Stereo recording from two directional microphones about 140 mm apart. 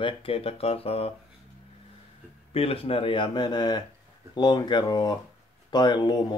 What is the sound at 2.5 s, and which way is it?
Speech, 40° left (ahead or behind).